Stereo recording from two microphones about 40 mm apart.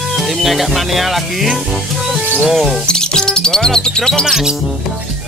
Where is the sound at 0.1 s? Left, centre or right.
Centre.